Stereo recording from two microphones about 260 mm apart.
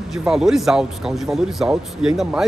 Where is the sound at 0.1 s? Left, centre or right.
Centre.